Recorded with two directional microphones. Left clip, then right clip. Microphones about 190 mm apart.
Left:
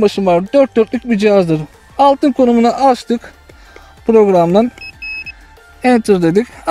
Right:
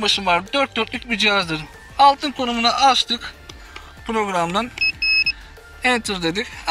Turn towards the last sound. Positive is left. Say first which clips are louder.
# left 9 dB
turn(degrees=70)  # may be behind; listen again after turning